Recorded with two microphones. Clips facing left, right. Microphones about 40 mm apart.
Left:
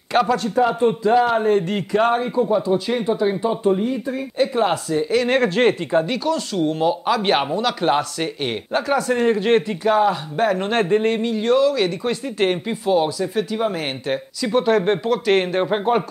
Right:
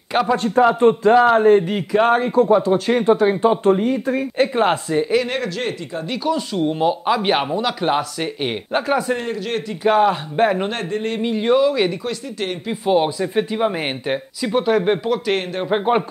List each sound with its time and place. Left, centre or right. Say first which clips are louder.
0.4 s a man's voice: right 3 dB; right
1.6 s speech: right 2 dB; centre
2.1 s speech: right 4 dB; right
5.4 s speech: left 7 dB; left
6.0 s speech: even; centre
9.2 s speech: left 7 dB; left
9.8 s speech: right 4 dB; right
10.8 s speech: left 6 dB; centre
11.2 s speech: right 1 dB; centre
12.1 s speech: left 5 dB; left
12.8 s speech: right 2 dB; right; by 15.7 s centre
15.7 s speech: right 4 dB; centre